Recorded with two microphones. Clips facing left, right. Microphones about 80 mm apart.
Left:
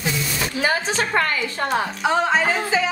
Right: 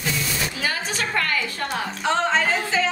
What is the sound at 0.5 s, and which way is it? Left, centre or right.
A woman's voice, left.